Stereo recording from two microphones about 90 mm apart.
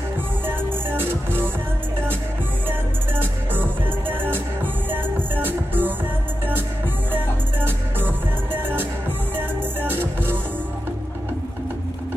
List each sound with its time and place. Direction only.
0.5 s music: 25° right (ahead or behind)
4.1 s music: 20° right (ahead or behind)
7.1 s music: 25° right (ahead or behind)